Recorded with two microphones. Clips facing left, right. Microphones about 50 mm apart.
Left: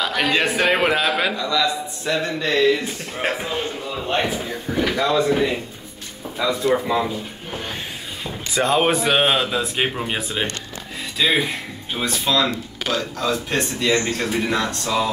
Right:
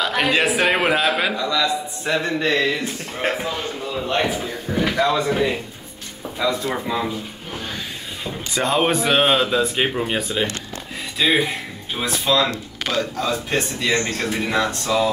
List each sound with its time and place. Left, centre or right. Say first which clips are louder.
0.0 s speech: right 1 dB; centre
2.0 s music: right 2 dB; right
2.8 s speech: right 1 dB; centre
3.4 s a man's voice: left 1 dB; left
4.7 s speech: even; centre
7.5 s speech: left 1 dB; left
8.2 s speech: left 1 dB; centre
11.1 s speech: right 1 dB; centre